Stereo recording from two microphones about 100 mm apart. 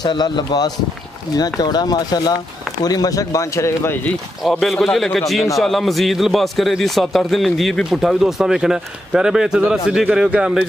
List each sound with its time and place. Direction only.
0.0 s speech: 45° left (ahead or behind); by 3.9 s 30° left (ahead or behind)
4.5 s a man's voice: centre (ahead or behind)